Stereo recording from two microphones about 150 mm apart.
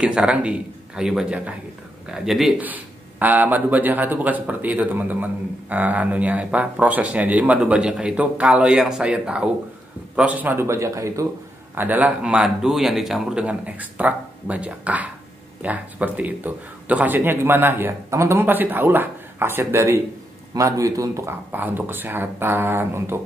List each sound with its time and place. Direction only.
0.0 s speech: 5° right (ahead or behind)